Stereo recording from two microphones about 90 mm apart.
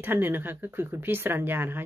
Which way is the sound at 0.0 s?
25° right (ahead or behind).